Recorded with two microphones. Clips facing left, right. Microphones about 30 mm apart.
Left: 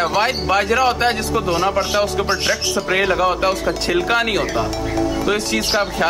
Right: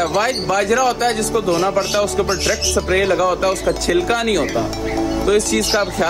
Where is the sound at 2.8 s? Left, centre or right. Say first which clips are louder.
Right 1 dB; centre.